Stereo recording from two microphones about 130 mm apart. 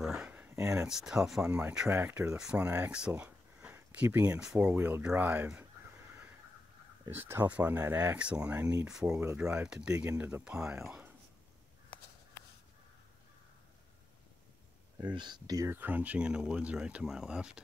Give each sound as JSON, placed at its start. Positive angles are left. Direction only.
{"t": 0.0, "sound": "a sound", "side_deg": -5}
{"t": 0.3, "sound": "a sound", "side_deg": -15}
{"t": 0.8, "sound": "speech", "side_deg": -5}
{"t": 1.9, "sound": "speech", "side_deg": -15}
{"t": 7.1, "sound": "speech", "side_deg": -20}
{"t": 15.0, "sound": "speech", "side_deg": -35}